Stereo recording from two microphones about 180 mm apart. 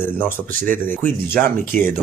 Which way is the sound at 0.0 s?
10° left (ahead or behind).